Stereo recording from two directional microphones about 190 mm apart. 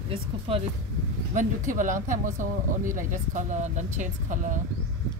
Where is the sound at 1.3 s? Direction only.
45° right (ahead or behind).